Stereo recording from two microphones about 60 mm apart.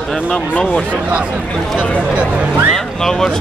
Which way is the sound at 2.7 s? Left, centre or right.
Centre.